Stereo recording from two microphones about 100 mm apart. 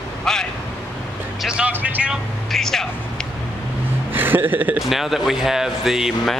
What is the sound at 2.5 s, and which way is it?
Speech, 5° left (ahead or behind).